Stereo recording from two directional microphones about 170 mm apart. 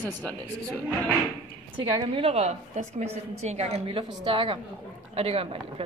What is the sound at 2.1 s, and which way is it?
A woman's voice, 35° right (ahead or behind).